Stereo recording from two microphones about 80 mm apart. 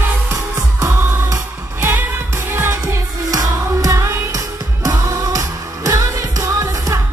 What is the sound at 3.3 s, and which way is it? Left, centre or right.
Music, right.